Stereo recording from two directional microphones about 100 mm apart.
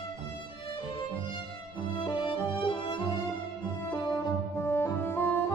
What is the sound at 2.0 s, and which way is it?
Music, 50° left (ahead or behind).